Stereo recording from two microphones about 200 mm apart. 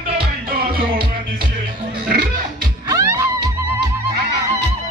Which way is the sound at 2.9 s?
15° right (ahead or behind).